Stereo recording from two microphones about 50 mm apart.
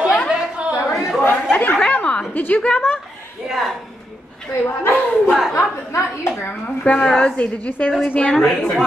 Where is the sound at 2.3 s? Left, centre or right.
Left.